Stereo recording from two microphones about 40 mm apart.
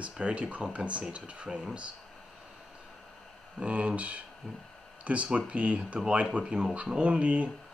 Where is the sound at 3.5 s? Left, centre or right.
Right.